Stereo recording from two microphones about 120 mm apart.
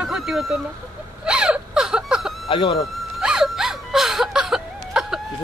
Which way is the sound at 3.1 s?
5° right (ahead or behind).